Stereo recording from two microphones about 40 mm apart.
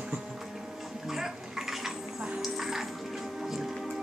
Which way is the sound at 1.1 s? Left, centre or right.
Centre.